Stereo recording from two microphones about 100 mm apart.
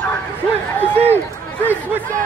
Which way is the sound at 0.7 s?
20° left (ahead or behind).